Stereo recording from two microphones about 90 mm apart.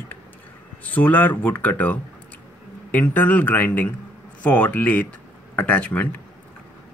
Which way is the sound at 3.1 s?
20° left (ahead or behind).